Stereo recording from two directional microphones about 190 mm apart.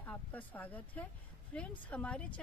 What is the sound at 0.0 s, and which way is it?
Speech, 10° left (ahead or behind).